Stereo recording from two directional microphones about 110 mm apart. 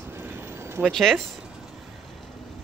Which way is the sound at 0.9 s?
5° left (ahead or behind).